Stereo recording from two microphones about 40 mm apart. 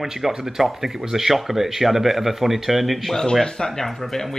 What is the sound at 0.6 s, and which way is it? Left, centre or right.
Speech, centre.